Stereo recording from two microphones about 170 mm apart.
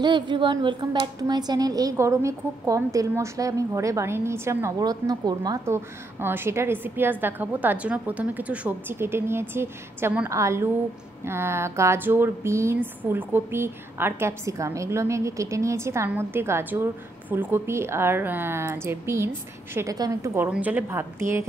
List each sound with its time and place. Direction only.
0.0 s a woman's voice: 25° right (ahead or behind)
20.4 s a woman's voice: 10° right (ahead or behind)